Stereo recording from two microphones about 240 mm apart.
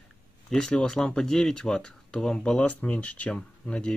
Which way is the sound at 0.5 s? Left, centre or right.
Centre.